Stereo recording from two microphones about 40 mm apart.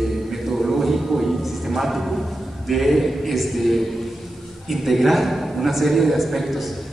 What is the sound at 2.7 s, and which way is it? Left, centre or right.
A man's voice, centre.